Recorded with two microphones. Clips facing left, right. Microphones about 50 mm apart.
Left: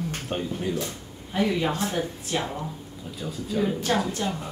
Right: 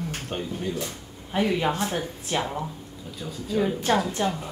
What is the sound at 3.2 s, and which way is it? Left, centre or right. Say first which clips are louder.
Speech: right 1 dB; centre.